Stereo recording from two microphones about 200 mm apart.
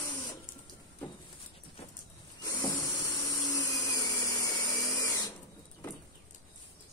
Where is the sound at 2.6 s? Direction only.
20° left (ahead or behind).